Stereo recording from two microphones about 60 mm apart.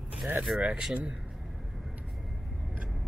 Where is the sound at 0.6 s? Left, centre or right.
Centre.